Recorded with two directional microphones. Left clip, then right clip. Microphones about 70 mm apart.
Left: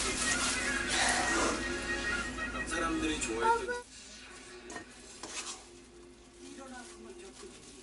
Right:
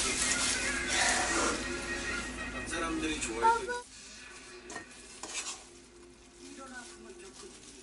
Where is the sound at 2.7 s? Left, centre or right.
Centre.